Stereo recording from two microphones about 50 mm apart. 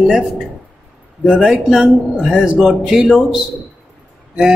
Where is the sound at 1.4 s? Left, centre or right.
Centre.